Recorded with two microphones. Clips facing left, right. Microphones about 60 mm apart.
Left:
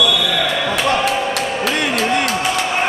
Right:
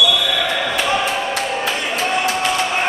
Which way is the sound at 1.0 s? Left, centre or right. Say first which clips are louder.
Left 2 dB; left.